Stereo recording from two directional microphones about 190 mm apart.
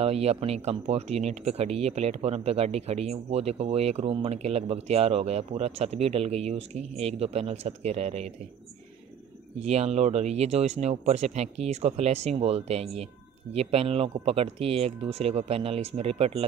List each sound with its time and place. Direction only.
0.0 s speech: 35° right (ahead or behind)
9.6 s speech: 35° right (ahead or behind)